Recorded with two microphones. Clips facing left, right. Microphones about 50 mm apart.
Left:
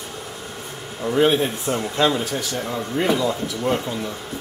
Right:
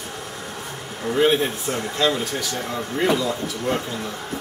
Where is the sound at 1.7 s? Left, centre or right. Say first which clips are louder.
Left 3 dB; left.